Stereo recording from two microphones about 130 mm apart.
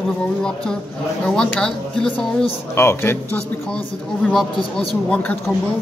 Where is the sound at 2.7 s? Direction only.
20° left (ahead or behind).